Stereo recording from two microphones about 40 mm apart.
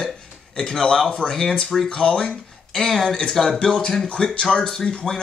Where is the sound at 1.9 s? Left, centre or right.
Left.